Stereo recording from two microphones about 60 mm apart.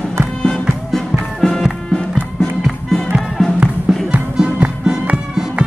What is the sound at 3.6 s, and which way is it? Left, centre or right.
Music, centre.